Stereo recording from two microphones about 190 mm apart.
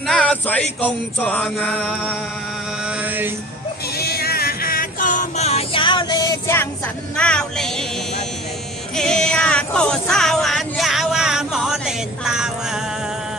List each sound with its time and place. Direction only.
0.0 s music: 5° left (ahead or behind)
4.0 s music: 55° left (ahead or behind); by 6.7 s 15° left (ahead or behind)
7.2 s vehicle: 5° left (ahead or behind)
8.9 s a sound: 5° left (ahead or behind)